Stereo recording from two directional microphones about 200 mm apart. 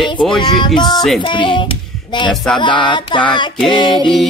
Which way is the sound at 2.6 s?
25° left (ahead or behind).